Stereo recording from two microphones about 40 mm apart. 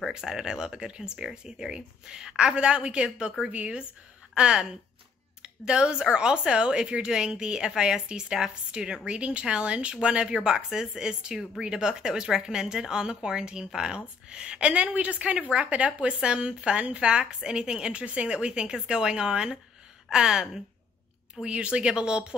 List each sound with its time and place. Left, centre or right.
0.1 s speech: centre
5.4 s speech: right